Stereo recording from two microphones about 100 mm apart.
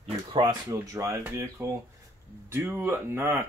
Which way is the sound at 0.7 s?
30° right (ahead or behind).